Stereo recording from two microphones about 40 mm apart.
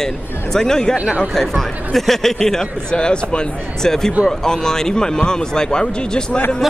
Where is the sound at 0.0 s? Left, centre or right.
Centre.